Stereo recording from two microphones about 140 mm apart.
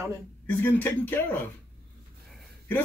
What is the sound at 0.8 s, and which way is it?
Speech, 15° left (ahead or behind).